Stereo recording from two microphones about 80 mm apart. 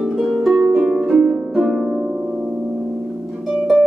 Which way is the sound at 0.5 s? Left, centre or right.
Centre.